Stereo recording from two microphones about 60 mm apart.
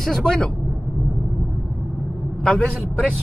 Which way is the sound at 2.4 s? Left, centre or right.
Centre.